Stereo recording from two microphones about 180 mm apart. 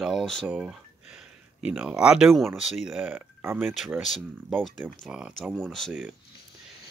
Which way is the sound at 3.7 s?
Centre (ahead or behind).